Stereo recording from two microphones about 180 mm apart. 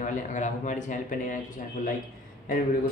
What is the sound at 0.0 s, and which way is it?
Speech, 45° left (ahead or behind).